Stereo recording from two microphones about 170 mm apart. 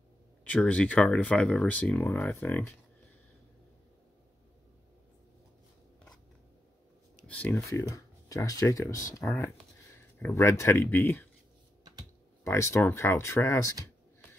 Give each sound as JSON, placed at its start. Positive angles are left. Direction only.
{"t": 0.4, "sound": "speech", "side_deg": 5}
{"t": 7.2, "sound": "speech", "side_deg": 10}
{"t": 11.8, "sound": "computer keyboard", "side_deg": -20}
{"t": 12.4, "sound": "speech", "side_deg": 15}